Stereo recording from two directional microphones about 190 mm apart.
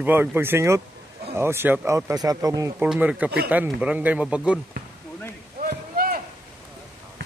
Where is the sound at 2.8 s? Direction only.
5° right (ahead or behind).